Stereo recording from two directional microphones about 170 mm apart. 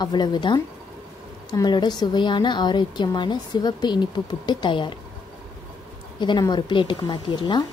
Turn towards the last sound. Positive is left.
turn(degrees=25)  # may be behind; listen again after turning